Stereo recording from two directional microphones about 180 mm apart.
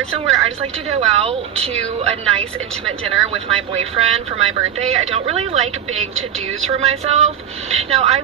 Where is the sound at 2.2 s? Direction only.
5° left (ahead or behind).